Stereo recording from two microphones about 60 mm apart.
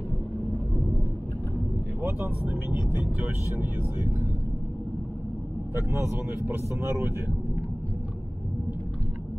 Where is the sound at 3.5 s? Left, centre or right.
Right.